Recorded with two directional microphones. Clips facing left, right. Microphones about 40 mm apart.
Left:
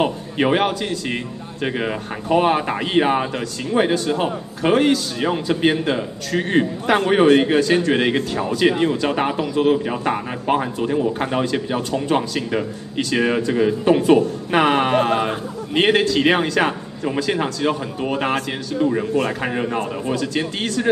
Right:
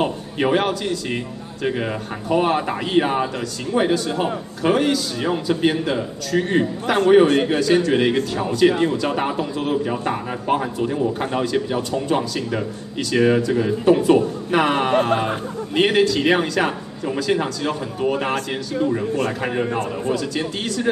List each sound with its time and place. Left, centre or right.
0.0 s a man's voice: left
18.9 s a man's voice: left
19.4 s a man's voice: centre